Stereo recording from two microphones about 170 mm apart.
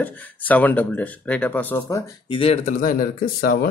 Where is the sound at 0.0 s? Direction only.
10° left (ahead or behind).